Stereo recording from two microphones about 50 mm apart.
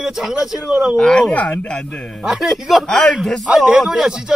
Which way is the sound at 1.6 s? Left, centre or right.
Left.